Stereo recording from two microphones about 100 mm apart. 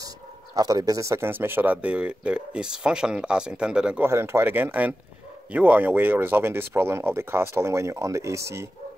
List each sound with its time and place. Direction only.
0.6 s speech: 40° right (ahead or behind); by 4.0 s 10° right (ahead or behind)
4.0 s speech: 25° right (ahead or behind)